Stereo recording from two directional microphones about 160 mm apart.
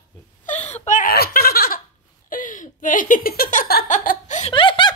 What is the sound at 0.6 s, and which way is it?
Wail, 45° left (ahead or behind).